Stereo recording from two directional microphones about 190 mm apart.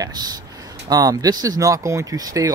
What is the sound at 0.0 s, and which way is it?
Speech, 20° right (ahead or behind).